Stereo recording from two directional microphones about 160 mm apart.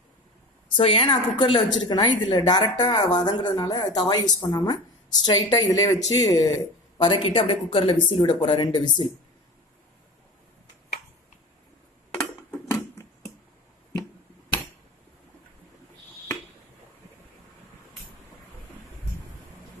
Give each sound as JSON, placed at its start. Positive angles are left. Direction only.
{"t": 0.7, "sound": "a woman's voice", "side_deg": 35}
{"t": 7.0, "sound": "speech", "side_deg": 30}
{"t": 12.1, "sound": "dishes", "side_deg": 15}